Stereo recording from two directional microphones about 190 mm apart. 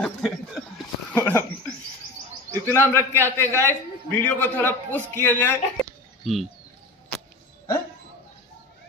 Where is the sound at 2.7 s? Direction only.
10° left (ahead or behind).